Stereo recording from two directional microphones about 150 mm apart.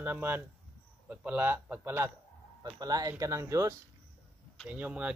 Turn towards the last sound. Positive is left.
turn(degrees=-10)  # may be behind; listen again after turning